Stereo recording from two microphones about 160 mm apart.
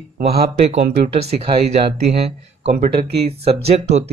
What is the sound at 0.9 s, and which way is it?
Speech, 40° right (ahead or behind).